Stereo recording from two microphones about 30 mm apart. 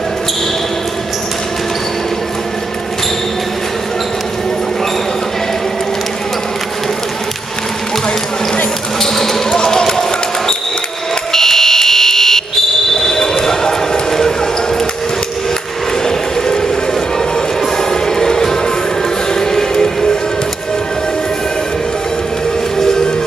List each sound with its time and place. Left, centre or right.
9.0 s basketball bounce: centre
11.3 s fire alarm: centre
13.0 s basketball bounce: centre
17.7 s music: centre
22.8 s music: centre